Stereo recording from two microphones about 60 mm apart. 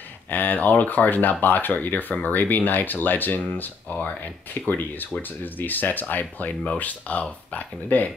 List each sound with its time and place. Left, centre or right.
0.3 s speech: left